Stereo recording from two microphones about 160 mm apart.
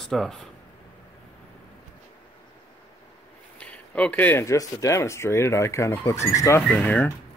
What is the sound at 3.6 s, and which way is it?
Speech, 10° left (ahead or behind).